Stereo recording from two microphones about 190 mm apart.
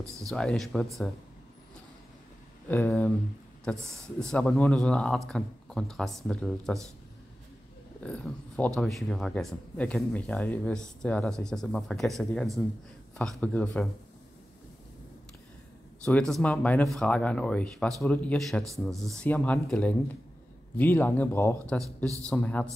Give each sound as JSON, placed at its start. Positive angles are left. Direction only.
{"t": 0.3, "sound": "speech", "side_deg": 5}
{"t": 2.7, "sound": "speech", "side_deg": 10}
{"t": 4.2, "sound": "speech", "side_deg": 5}
{"t": 8.0, "sound": "speech", "side_deg": 5}
{"t": 16.0, "sound": "speech", "side_deg": 5}
{"t": 22.0, "sound": "a man's voice", "side_deg": -15}
{"t": 22.3, "sound": "speech", "side_deg": 5}